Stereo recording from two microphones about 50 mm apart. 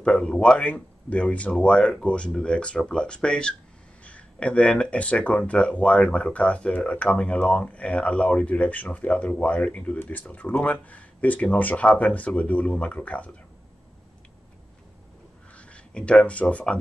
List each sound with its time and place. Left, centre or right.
0.0 s speech: centre
15.5 s speech: left